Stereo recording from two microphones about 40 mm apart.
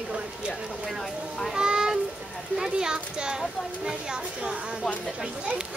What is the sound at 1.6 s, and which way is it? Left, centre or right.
A child's voice, centre.